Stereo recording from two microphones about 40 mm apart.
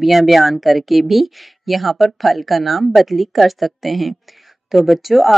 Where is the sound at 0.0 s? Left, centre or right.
Centre.